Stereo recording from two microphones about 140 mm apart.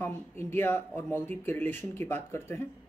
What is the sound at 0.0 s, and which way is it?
Speech, 15° left (ahead or behind).